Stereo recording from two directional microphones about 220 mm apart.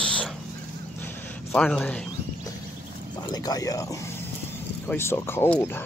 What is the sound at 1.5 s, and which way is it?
Speech, 5° left (ahead or behind).